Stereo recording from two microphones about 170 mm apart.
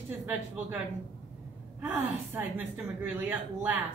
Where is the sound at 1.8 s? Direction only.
10° right (ahead or behind).